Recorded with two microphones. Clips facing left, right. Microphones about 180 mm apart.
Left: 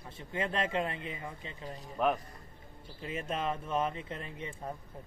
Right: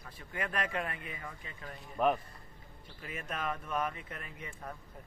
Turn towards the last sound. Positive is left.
turn(degrees=25)  # may be behind; listen again after turning